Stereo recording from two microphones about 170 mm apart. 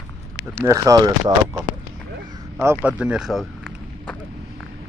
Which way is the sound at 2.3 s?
15° right (ahead or behind).